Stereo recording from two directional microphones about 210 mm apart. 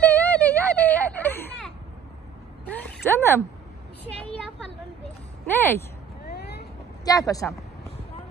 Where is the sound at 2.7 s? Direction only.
10° left (ahead or behind).